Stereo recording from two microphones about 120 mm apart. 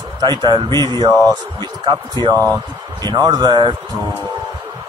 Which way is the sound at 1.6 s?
40° right (ahead or behind).